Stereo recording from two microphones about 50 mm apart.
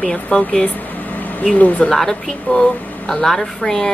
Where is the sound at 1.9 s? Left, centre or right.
Centre.